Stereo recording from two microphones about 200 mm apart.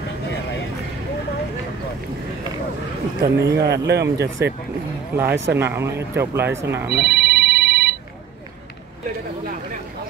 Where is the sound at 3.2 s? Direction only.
15° right (ahead or behind).